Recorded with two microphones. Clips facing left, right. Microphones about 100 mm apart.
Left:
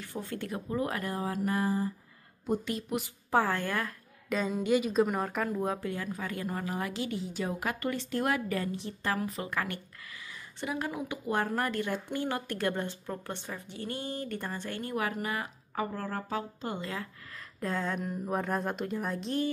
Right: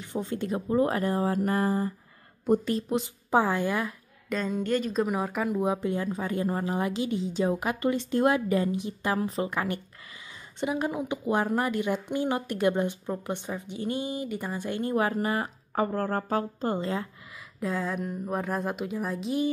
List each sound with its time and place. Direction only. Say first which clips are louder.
0.0 s speech: right 6 dB; 20° right (ahead or behind); by 2.7 s 50° right (ahead or behind)
2.7 s a woman's voice: right 6 dB; 25° right (ahead or behind)
4.3 s speech: even; 5° left (ahead or behind)
5.5 s a woman's voice: right 5 dB; 15° right (ahead or behind)
17.6 s speech: right 3 dB; centre (ahead or behind)